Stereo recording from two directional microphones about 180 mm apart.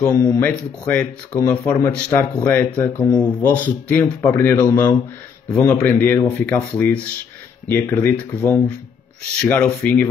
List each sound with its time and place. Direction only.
0.0 s speech: 20° left (ahead or behind)
0.4 s speech: 5° left (ahead or behind)
5.5 s speech: 5° left (ahead or behind)